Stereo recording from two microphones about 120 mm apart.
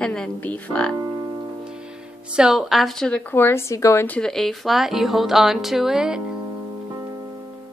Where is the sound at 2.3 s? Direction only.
5° right (ahead or behind).